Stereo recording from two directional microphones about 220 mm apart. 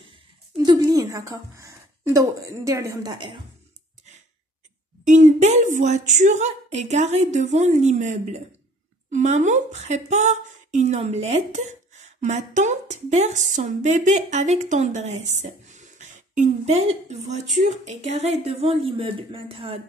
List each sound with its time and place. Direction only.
0.6 s a woman's voice: 15° right (ahead or behind)
5.0 s a woman's voice: 35° right (ahead or behind)